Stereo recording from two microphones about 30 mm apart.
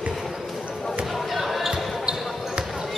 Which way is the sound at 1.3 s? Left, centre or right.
Centre.